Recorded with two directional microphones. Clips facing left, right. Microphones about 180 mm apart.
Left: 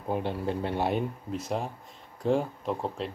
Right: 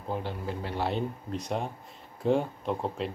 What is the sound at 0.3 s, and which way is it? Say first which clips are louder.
Speech: left 5 dB; 20° left (ahead or behind).